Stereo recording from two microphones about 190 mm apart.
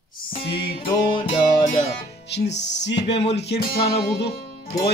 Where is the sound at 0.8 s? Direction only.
25° left (ahead or behind).